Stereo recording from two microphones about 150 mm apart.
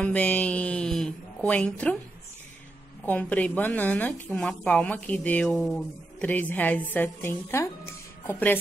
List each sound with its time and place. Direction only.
0.0 s a woman's voice: 10° left (ahead or behind)
3.1 s a woman's voice: 10° left (ahead or behind)